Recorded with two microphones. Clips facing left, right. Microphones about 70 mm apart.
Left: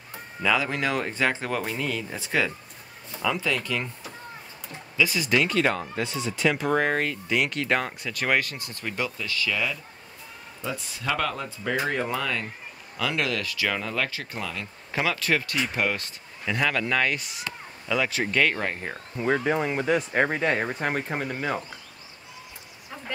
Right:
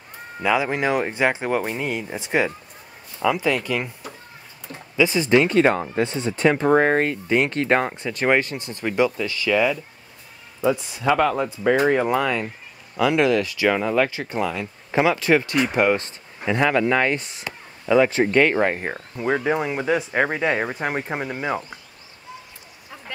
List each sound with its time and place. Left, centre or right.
0.4 s speech: right
4.9 s speech: right
18.7 s speech: right
19.1 s speech: centre